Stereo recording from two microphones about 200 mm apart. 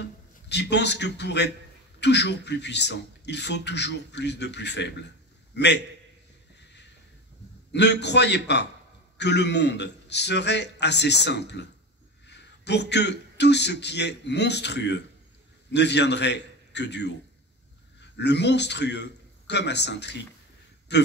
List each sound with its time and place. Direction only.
0.5 s speech: 60° left (ahead or behind)
7.7 s a man's voice: 60° left (ahead or behind)
18.1 s a man's voice: 60° left (ahead or behind)